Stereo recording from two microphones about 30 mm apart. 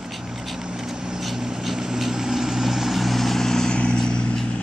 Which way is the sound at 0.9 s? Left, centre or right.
Right.